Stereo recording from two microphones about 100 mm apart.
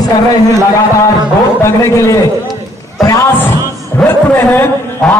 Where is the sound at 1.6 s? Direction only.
30° left (ahead or behind).